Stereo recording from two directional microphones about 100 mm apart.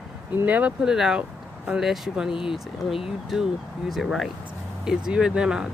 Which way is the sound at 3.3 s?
Centre (ahead or behind).